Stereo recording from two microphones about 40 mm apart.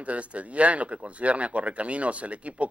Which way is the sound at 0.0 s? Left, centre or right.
Right.